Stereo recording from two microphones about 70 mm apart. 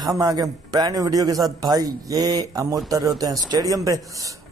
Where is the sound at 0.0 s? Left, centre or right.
Right.